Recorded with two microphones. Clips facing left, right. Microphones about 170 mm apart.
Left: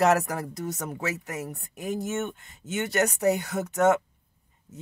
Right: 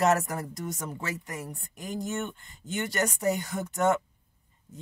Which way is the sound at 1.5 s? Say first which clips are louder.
Left 4 dB; 65° left (ahead or behind).